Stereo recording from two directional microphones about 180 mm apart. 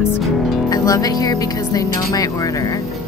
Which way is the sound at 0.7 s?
20° left (ahead or behind).